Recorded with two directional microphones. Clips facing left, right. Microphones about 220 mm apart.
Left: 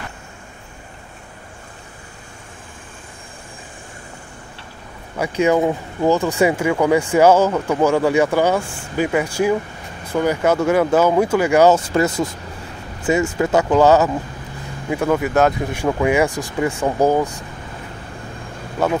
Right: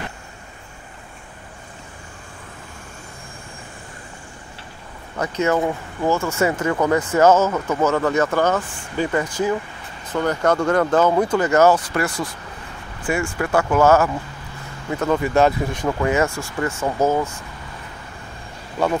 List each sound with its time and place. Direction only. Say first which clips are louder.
5.1 s speech: left 3 dB; 10° left (ahead or behind)
11.7 s speech: left 4 dB; 25° left (ahead or behind)
18.8 s speech: left 1 dB; 5° left (ahead or behind)